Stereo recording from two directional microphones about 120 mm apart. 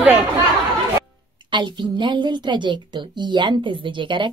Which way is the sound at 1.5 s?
40° right (ahead or behind).